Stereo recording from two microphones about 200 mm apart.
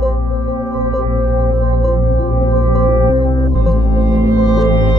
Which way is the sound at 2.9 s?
20° right (ahead or behind).